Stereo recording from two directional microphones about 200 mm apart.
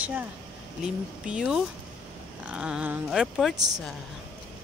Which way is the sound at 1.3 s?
5° right (ahead or behind).